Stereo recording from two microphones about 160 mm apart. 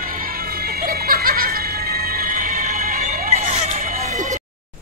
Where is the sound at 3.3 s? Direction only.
45° right (ahead or behind).